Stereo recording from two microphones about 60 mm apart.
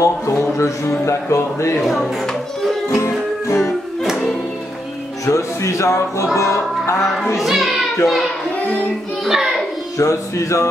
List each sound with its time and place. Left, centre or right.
0.0 s music: left
1.0 s speech: left
2.9 s music: left
4.0 s music: centre
5.2 s speech: left
6.3 s music: left
7.3 s a child's voice: centre
9.2 s music: centre
9.9 s music: left